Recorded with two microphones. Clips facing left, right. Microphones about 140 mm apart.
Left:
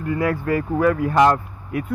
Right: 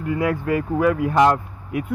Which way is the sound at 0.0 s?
15° right (ahead or behind).